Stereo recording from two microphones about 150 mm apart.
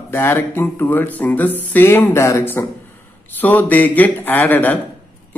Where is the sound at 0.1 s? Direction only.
15° left (ahead or behind).